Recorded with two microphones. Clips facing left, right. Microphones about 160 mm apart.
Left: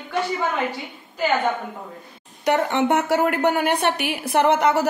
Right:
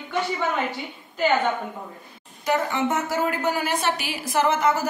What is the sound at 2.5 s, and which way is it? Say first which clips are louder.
A woman's voice: left 4 dB; 70° left (ahead or behind).